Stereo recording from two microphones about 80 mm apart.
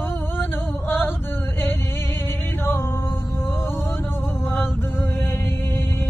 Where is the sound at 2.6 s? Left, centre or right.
Left.